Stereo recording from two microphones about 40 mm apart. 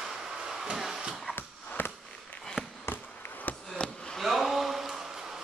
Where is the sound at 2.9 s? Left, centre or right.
Left.